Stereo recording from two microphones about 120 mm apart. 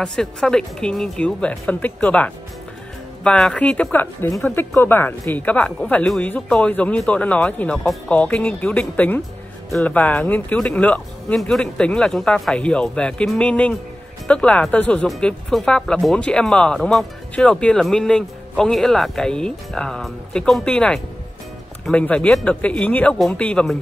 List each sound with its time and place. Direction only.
0.0 s speech: 5° left (ahead or behind)
9.9 s speech: 15° left (ahead or behind)